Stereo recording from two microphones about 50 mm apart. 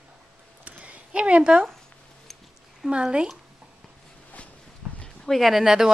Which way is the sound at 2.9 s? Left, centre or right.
Centre.